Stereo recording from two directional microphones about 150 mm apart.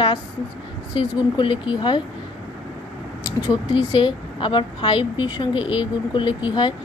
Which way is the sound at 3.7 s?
35° left (ahead or behind).